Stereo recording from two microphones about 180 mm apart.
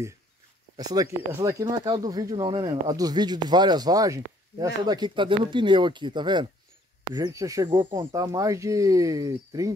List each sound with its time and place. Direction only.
0.7 s speech: 20° right (ahead or behind)